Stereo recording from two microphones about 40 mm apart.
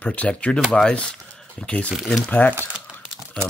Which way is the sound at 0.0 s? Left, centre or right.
Left.